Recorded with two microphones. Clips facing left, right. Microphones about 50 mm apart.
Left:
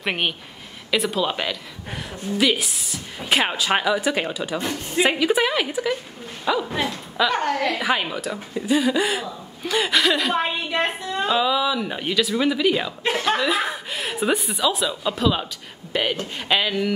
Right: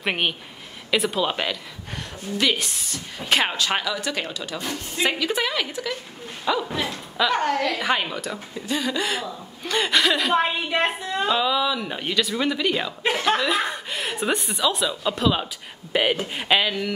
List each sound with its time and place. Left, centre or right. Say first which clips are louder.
0.0 s a woman's voice: even; centre